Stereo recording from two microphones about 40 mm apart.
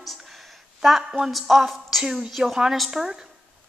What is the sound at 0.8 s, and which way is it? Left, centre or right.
A woman's voice, centre.